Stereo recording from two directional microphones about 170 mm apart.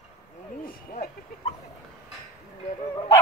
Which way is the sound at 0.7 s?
60° left (ahead or behind).